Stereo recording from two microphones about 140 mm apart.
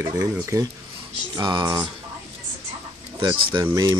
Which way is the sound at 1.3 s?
30° right (ahead or behind).